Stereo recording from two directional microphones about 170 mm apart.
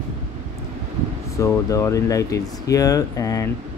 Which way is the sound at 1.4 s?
15° left (ahead or behind).